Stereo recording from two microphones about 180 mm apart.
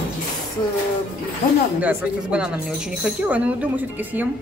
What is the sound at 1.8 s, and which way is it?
Speech, 10° right (ahead or behind).